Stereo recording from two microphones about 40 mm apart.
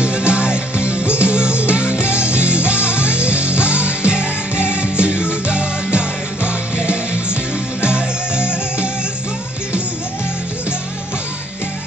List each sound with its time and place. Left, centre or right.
0.0 s music: right